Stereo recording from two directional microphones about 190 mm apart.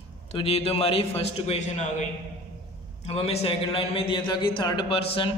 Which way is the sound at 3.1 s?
35° left (ahead or behind).